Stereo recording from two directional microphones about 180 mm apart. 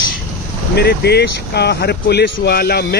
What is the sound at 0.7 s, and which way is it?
Speech, 65° left (ahead or behind).